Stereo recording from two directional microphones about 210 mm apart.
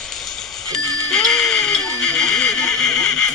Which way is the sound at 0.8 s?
15° right (ahead or behind).